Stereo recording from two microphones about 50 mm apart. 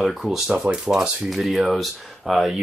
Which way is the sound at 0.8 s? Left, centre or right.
Centre.